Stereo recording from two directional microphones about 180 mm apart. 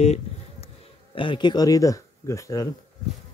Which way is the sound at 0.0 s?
35° left (ahead or behind).